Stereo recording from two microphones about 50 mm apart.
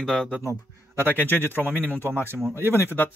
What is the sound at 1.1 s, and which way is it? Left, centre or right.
Speech, left.